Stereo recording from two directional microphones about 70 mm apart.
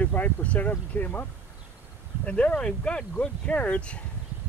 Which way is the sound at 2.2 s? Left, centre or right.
Centre.